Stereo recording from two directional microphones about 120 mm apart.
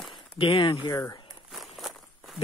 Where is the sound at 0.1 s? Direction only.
45° left (ahead or behind).